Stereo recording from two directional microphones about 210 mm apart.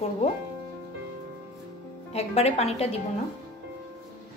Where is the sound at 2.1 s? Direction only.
30° left (ahead or behind).